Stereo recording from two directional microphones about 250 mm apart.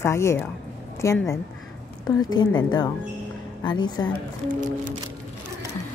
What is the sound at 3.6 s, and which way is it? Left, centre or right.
Speech, centre.